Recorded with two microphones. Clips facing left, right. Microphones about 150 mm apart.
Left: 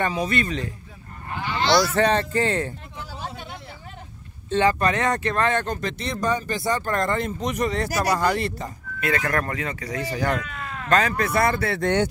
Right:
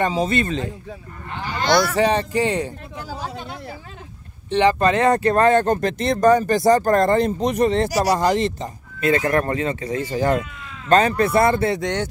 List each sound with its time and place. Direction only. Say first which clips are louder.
0.0 s speech: right 4 dB; 25° right (ahead or behind)
1.4 s a man's voice: right 2 dB; 45° right (ahead or behind)
2.0 s speech: right 2 dB; 10° right (ahead or behind)
4.5 s speech: right 4 dB; 20° right (ahead or behind)
10.4 s cat: left 4 dB; 65° left (ahead or behind)
10.9 s speech: right 5 dB; 30° right (ahead or behind)
11.8 s speech: left 2 dB; 10° left (ahead or behind)